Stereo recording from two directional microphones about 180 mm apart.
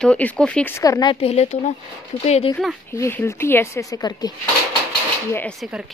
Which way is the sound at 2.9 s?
15° left (ahead or behind).